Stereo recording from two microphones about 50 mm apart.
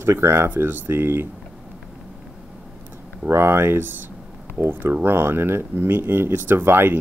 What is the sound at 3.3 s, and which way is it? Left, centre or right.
Speech, right.